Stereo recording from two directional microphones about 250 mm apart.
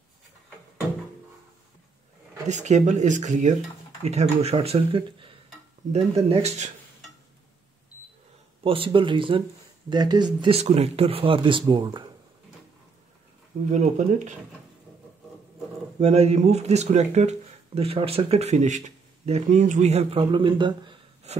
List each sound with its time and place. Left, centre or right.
2.4 s speech: right
8.6 s speech: right
13.7 s speech: right
16.0 s speech: right